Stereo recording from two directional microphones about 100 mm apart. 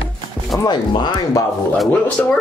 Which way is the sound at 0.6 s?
50° left (ahead or behind).